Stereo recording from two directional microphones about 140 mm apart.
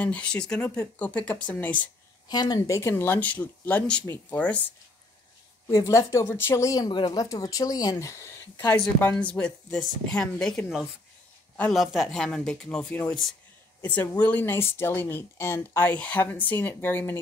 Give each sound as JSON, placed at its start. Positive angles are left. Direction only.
{"t": 0.0, "sound": "speech", "side_deg": 10}
{"t": 2.2, "sound": "speech", "side_deg": 30}
{"t": 5.7, "sound": "speech", "side_deg": 20}
{"t": 9.0, "sound": "speech", "side_deg": 10}
{"t": 11.7, "sound": "speech", "side_deg": 0}